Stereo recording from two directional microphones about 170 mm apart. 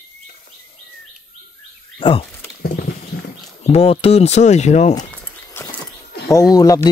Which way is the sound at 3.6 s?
35° left (ahead or behind).